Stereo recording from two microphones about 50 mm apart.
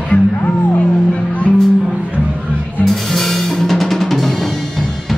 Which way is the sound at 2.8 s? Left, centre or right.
Centre.